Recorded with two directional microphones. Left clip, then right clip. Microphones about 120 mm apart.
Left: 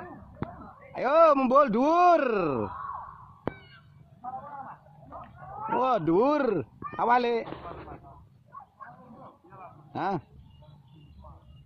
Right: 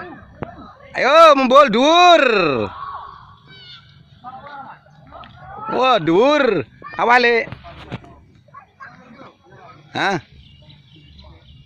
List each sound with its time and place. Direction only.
0.9 s speech: 10° right (ahead or behind)
4.2 s a sound: centre (ahead or behind)
5.8 s speech: 15° right (ahead or behind)
7.1 s speech: 20° right (ahead or behind)
9.9 s speech: centre (ahead or behind)